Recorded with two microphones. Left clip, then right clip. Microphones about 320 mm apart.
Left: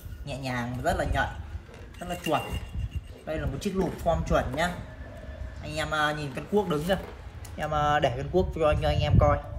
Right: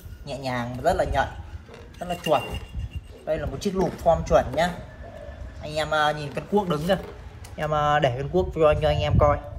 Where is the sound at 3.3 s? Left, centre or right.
Centre.